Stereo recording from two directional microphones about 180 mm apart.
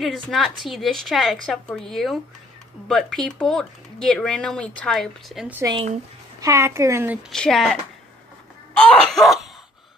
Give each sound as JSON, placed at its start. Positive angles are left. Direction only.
{"t": 0.0, "sound": "speech", "side_deg": 0}
{"t": 5.6, "sound": "a woman's voice", "side_deg": -20}
{"t": 7.2, "sound": "speech", "side_deg": 0}
{"t": 8.7, "sound": "speech", "side_deg": 5}